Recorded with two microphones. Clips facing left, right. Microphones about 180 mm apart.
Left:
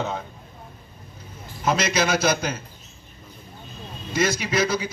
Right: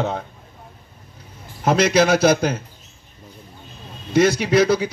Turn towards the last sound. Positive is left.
turn(degrees=-65)  # may be behind; listen again after turning